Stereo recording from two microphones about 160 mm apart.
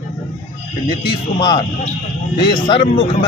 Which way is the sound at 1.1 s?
25° left (ahead or behind).